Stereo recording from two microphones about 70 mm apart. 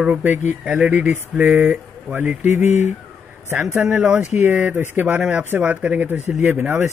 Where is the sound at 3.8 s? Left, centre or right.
Centre.